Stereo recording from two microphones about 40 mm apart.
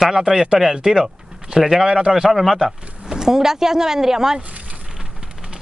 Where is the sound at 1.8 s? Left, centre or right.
Centre.